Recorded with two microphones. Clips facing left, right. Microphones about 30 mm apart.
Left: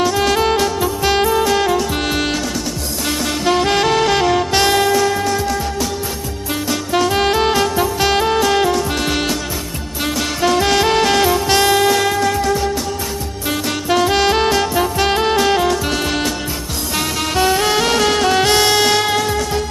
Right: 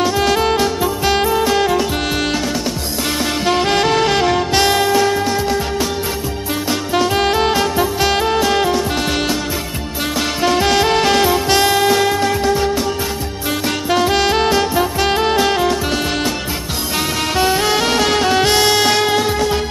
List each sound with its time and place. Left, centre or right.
0.0 s music: centre
3.4 s saxophone: centre
5.2 s music: right
6.9 s music: centre
12.4 s music: centre
13.5 s music: centre
19.1 s music: right